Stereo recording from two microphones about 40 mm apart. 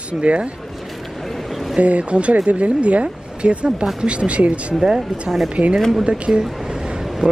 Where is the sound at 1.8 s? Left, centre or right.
Right.